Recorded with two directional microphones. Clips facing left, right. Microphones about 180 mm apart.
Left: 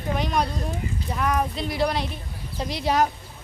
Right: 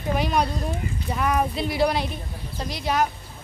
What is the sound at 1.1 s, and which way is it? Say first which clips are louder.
Speech: right 2 dB; 5° right (ahead or behind).